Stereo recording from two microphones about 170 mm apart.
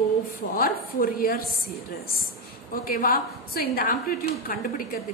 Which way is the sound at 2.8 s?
55° left (ahead or behind).